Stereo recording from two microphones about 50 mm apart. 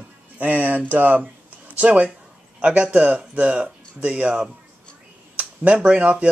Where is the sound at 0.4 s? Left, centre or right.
Right.